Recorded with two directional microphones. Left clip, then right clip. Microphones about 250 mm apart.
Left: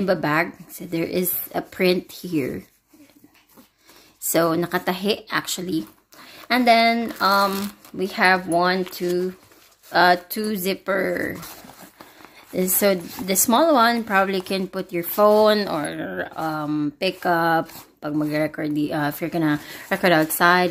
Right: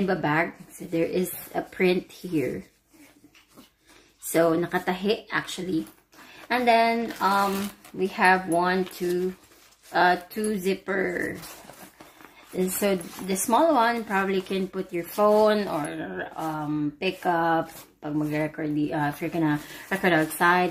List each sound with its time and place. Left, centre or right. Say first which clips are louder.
0.0 s speech: left 4 dB; left
4.3 s speech: left 2 dB; left
12.5 s speech: left 5 dB; left